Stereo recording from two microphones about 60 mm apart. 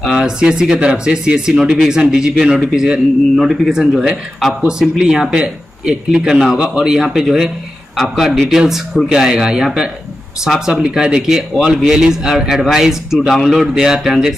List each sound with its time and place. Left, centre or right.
0.0 s speech: centre